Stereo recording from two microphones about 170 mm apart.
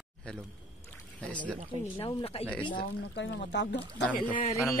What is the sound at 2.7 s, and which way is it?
Speech, 90° left.